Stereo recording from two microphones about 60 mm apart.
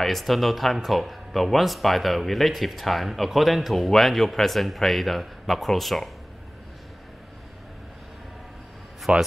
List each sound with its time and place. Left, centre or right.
0.0 s speech: centre
9.1 s speech: centre